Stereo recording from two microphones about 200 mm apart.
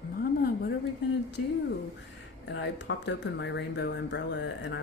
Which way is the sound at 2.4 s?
60° left (ahead or behind).